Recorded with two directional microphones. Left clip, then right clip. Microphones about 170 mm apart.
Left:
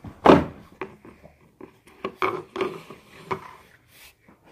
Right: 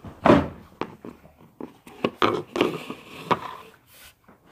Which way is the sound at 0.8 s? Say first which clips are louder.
Right 3 dB; 45° right (ahead or behind).